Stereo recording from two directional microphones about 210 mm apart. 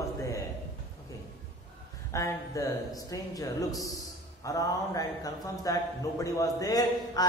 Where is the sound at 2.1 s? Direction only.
15° left (ahead or behind).